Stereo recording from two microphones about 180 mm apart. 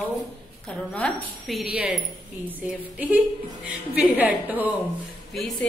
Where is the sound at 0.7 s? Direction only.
5° left (ahead or behind).